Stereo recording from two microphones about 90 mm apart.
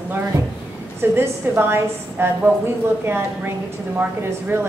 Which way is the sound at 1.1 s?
25° right (ahead or behind).